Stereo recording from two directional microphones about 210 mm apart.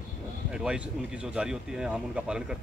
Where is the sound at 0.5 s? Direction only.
5° right (ahead or behind).